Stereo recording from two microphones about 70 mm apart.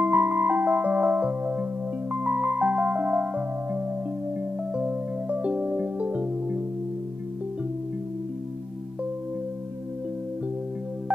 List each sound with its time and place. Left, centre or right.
0.0 s music: right